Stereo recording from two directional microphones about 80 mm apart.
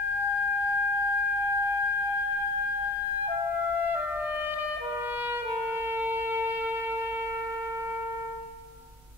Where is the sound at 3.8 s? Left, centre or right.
Right.